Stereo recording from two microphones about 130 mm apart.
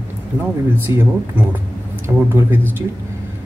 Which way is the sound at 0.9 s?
35° left (ahead or behind).